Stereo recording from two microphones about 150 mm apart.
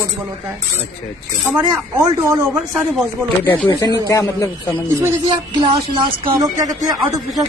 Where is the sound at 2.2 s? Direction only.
20° right (ahead or behind).